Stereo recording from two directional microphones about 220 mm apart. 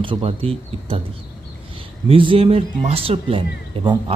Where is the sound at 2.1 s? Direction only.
25° right (ahead or behind).